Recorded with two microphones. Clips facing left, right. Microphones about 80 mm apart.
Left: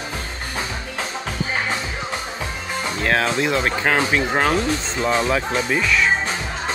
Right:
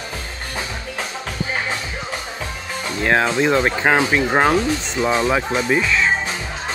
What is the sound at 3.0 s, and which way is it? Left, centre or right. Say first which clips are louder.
Speech: right 3 dB; centre.